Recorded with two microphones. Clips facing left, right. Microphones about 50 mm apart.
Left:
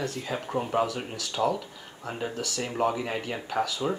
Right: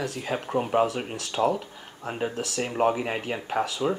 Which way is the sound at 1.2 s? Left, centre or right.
Right.